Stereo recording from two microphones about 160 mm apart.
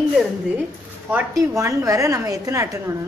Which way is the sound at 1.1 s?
20° right (ahead or behind).